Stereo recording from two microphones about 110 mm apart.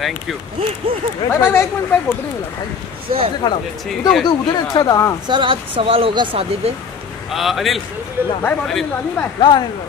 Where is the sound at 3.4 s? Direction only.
35° left (ahead or behind).